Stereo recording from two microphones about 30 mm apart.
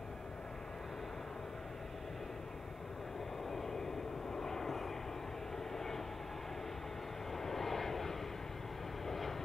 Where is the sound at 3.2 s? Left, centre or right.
Centre.